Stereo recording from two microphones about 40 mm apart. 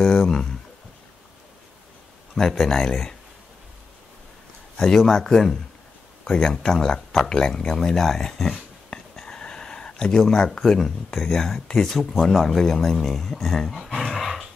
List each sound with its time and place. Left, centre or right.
0.0 s a sound: left
2.5 s speech: centre
4.7 s speech: centre
6.2 s speech: centre
8.9 s a sound: centre
10.1 s speech: centre
14.1 s dog: centre